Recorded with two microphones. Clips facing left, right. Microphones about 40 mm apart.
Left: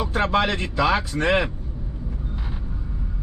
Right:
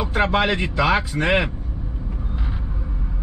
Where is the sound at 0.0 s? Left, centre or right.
Centre.